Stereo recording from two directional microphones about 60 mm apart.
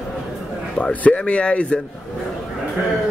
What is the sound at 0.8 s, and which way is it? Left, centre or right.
Speech, left.